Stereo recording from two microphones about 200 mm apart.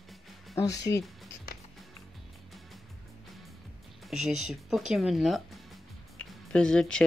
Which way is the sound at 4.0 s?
Centre (ahead or behind).